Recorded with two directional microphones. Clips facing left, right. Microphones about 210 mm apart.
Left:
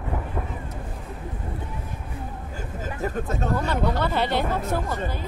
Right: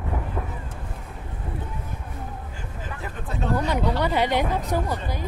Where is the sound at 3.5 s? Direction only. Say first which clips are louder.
Right 2 dB; 15° right (ahead or behind).